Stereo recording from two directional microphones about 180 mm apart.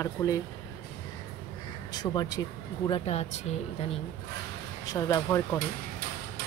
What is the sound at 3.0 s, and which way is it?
Speech, 35° left (ahead or behind).